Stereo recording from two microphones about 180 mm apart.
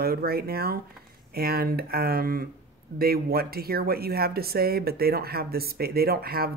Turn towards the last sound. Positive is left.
turn(degrees=-60)  # may be behind; listen again after turning